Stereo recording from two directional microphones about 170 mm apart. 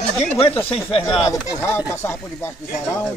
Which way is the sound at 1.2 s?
15° left (ahead or behind).